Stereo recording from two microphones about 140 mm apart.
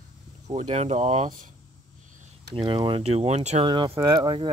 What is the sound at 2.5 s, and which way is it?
Speech, 35° right (ahead or behind).